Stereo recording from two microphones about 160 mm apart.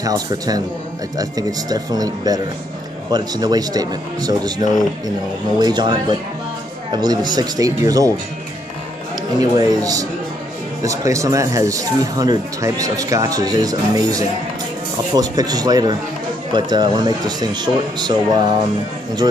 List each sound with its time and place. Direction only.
0.0 s speech: 25° right (ahead or behind)
9.4 s speech: 20° right (ahead or behind)